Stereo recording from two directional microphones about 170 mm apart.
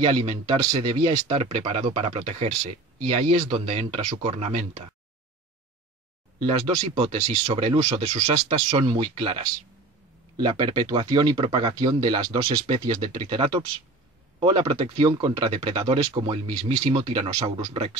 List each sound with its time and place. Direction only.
0.0 s speech: 25° right (ahead or behind)
6.7 s speech: 25° right (ahead or behind)
7.4 s speech: 35° right (ahead or behind)